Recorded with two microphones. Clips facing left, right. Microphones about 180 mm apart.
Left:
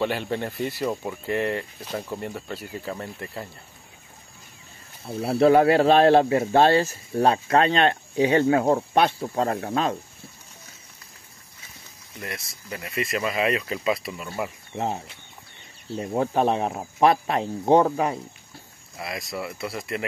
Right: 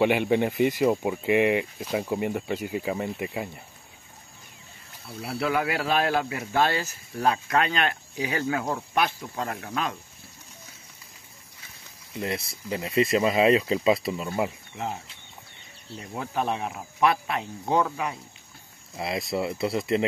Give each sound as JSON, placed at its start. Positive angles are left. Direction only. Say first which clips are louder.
{"t": 0.0, "sound": "speech", "louder": "right 5 dB", "side_deg": -15}
{"t": 5.0, "sound": "speech", "louder": "left 10 dB", "side_deg": 40}
{"t": 12.6, "sound": "speech", "louder": "right 6 dB", "side_deg": -20}
{"t": 14.8, "sound": "speech", "louder": "left 5 dB", "side_deg": 35}
{"t": 18.9, "sound": "speech", "louder": "right 4 dB", "side_deg": -25}